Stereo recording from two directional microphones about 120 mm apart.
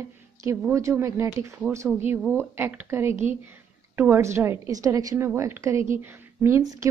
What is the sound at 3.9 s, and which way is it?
A woman's voice, 20° right (ahead or behind).